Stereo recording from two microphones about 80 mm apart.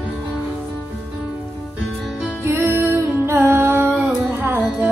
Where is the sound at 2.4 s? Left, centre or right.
Right.